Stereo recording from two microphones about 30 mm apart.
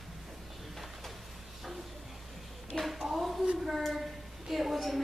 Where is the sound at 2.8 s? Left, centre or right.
Centre.